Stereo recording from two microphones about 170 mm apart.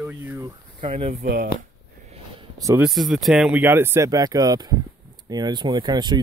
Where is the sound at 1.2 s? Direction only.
60° right (ahead or behind).